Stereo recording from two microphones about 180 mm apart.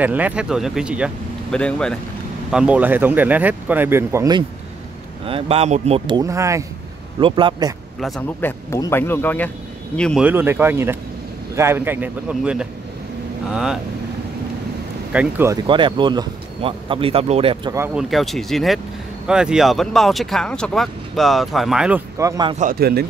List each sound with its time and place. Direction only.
0.0 s speech: 10° right (ahead or behind)
1.5 s speech: 5° left (ahead or behind)
2.5 s speech: 5° right (ahead or behind)
5.2 s speech: 30° right (ahead or behind)
7.2 s speech: 25° right (ahead or behind)
8.4 s speech: 15° left (ahead or behind)
10.2 s speech: 10° right (ahead or behind)
15.1 s speech: 15° right (ahead or behind)
15.6 s speech: 25° right (ahead or behind)
17.7 s speech: 10° right (ahead or behind)
18.1 s speech: centre (ahead or behind)
22.2 s speech: 25° right (ahead or behind)
22.6 s a man's voice: 55° right (ahead or behind)